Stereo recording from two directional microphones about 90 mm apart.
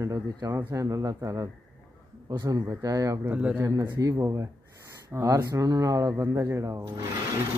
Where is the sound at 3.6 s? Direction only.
40° right (ahead or behind).